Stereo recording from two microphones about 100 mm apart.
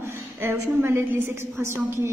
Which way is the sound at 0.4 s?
25° right (ahead or behind).